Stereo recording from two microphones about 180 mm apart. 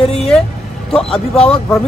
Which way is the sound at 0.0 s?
35° left (ahead or behind).